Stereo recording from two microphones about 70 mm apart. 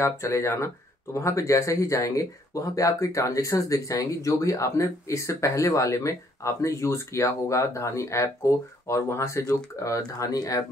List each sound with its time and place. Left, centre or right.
0.0 s speech: left